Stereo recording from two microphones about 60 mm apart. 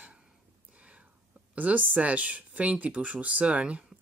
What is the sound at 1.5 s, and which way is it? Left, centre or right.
A woman's voice, right.